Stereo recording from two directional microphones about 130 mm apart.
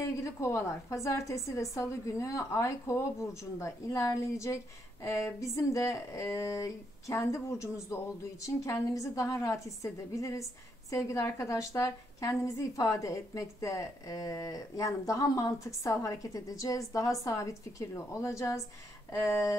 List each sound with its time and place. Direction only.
0.2 s a woman's voice: 20° left (ahead or behind)